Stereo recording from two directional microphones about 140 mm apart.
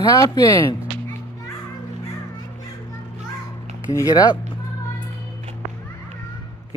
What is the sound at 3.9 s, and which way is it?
Speech, 25° left (ahead or behind).